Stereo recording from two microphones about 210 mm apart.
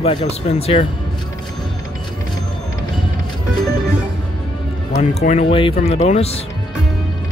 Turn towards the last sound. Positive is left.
turn(degrees=30)  # may be behind; listen again after turning